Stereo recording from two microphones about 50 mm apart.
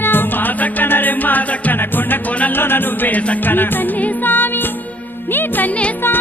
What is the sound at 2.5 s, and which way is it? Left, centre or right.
Chant, left.